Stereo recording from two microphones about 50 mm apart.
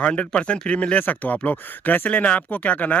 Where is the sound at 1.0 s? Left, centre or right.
Left.